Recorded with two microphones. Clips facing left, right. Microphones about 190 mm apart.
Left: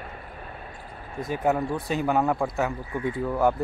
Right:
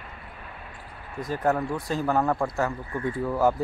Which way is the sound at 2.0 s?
15° left (ahead or behind).